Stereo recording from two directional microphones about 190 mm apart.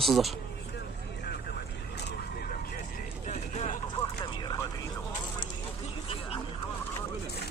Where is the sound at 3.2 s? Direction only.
35° left (ahead or behind).